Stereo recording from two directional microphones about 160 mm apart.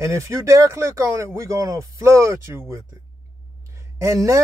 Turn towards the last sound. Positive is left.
turn(degrees=-20)  # may be behind; listen again after turning